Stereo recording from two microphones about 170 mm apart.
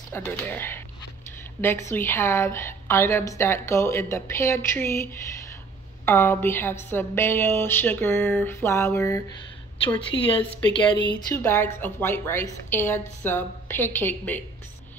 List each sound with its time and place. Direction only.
0.1 s a woman's voice: 10° left (ahead or behind)
10.1 s speech: 30° left (ahead or behind)
11.3 s a woman's voice: 15° left (ahead or behind)